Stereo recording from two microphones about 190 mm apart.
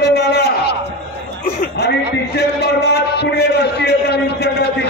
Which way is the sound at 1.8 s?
60° left (ahead or behind).